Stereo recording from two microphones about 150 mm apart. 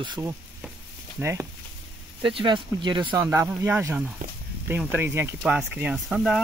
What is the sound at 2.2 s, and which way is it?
Speech, 35° right (ahead or behind).